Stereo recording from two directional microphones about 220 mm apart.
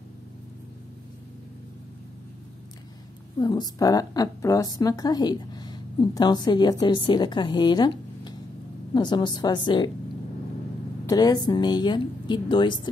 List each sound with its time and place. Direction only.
3.3 s a woman's voice: 20° left (ahead or behind)
11.1 s a woman's voice: 15° left (ahead or behind)